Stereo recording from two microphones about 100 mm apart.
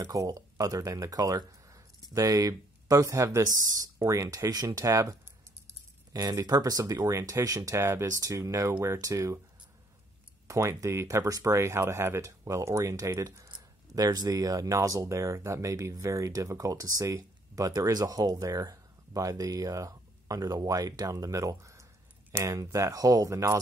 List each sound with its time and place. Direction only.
0.0 s speech: 35° right (ahead or behind)
6.1 s speech: 40° right (ahead or behind)
10.5 s speech: 30° right (ahead or behind)